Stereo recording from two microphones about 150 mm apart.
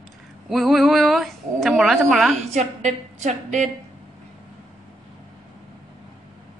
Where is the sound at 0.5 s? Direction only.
Centre (ahead or behind).